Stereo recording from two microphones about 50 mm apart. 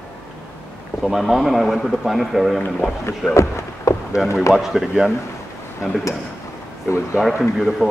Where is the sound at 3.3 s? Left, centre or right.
Left.